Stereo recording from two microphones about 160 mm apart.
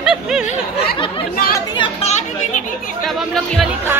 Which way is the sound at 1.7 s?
30° left (ahead or behind).